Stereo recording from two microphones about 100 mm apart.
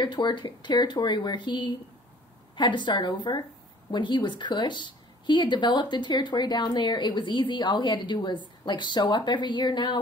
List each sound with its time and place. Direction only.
0.0 s a woman's voice: 50° left (ahead or behind)